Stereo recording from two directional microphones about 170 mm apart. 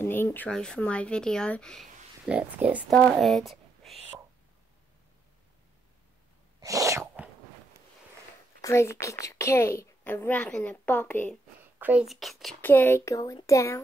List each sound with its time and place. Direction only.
0.0 s speech: 15° left (ahead or behind)
2.2 s speech: 10° right (ahead or behind)
2.9 s speech: 5° left (ahead or behind)
6.6 s a sound: 20° right (ahead or behind)
8.5 s a woman's voice: 15° left (ahead or behind)
11.8 s speech: 5° right (ahead or behind)
12.6 s speech: 10° left (ahead or behind)